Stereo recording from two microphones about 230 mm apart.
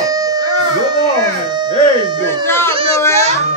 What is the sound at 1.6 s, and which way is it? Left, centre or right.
Music, centre.